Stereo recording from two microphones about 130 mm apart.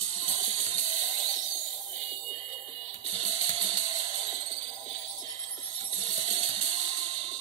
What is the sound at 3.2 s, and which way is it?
Music, 40° right (ahead or behind).